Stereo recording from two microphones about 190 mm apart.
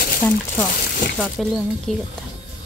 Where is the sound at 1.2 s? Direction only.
Centre (ahead or behind).